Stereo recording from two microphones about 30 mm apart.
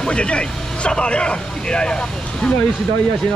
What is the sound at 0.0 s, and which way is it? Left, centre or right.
Speech, left.